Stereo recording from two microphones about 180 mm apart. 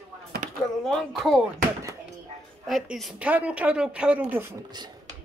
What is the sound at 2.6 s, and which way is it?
A woman's voice, centre (ahead or behind).